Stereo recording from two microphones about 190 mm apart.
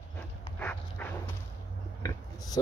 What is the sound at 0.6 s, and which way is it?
Dog, 10° left (ahead or behind).